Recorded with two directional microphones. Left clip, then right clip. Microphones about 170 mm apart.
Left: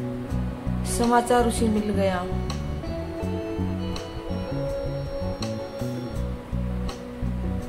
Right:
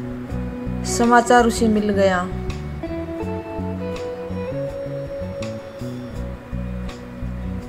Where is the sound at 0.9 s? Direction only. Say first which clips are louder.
Right 6 dB; 25° right (ahead or behind).